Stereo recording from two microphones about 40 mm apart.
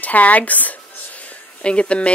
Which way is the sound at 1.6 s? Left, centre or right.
Left.